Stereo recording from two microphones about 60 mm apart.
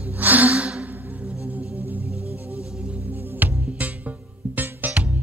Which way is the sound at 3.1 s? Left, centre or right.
Right.